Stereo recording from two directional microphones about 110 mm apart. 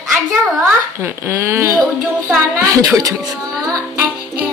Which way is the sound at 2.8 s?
30° right (ahead or behind).